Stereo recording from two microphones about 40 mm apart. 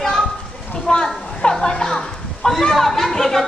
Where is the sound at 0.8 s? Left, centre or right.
Centre.